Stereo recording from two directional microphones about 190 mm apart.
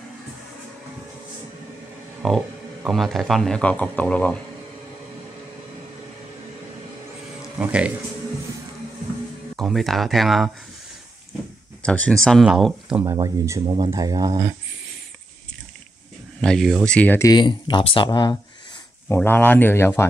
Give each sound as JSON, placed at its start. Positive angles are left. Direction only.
{"t": 2.2, "sound": "speech", "side_deg": 0}
{"t": 7.5, "sound": "speech", "side_deg": -5}
{"t": 9.6, "sound": "speech", "side_deg": 0}
{"t": 11.8, "sound": "speech", "side_deg": 5}
{"t": 13.0, "sound": "speech", "side_deg": -20}
{"t": 16.3, "sound": "speech", "side_deg": 5}
{"t": 19.0, "sound": "speech", "side_deg": 10}